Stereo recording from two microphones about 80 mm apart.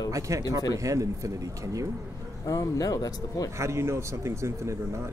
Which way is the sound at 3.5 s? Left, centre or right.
Right.